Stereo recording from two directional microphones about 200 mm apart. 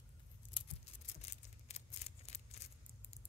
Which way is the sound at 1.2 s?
30° left (ahead or behind).